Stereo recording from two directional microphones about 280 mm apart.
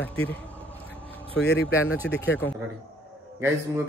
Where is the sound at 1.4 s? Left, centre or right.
Left.